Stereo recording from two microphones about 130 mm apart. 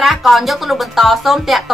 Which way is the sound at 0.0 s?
Centre (ahead or behind).